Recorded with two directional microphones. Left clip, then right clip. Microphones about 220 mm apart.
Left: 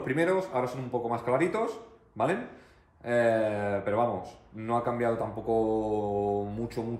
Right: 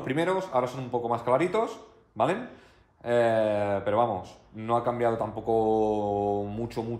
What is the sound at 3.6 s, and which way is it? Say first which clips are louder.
Mantra: right 3 dB; 20° right (ahead or behind).